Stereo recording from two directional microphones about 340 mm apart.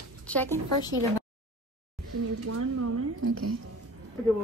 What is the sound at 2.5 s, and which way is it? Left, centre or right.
Speech, right.